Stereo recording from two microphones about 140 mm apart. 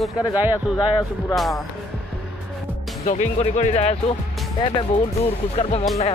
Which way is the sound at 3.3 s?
50° left (ahead or behind).